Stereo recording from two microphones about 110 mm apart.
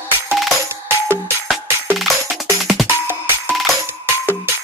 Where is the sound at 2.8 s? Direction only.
20° right (ahead or behind).